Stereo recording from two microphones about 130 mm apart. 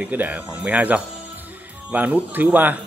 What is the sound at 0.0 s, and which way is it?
Speech, 10° right (ahead or behind).